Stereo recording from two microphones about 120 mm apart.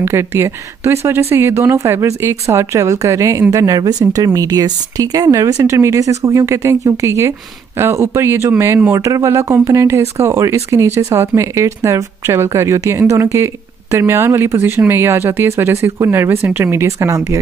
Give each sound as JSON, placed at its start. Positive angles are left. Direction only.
{"t": 0.0, "sound": "speech", "side_deg": -20}